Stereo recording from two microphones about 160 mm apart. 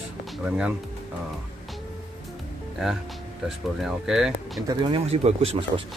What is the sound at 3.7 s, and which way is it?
Speech, centre (ahead or behind).